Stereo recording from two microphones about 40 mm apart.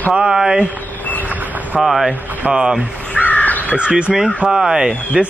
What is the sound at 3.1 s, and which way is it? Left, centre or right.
Crow, left.